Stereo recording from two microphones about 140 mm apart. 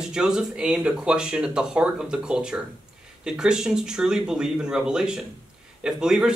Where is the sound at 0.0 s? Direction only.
5° right (ahead or behind).